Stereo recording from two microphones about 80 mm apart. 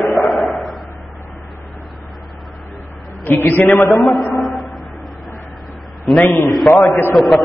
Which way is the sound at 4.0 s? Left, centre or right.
Centre.